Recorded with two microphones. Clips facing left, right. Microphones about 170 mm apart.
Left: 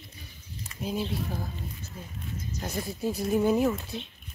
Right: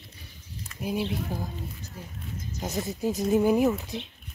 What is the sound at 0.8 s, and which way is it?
Speech, 10° right (ahead or behind).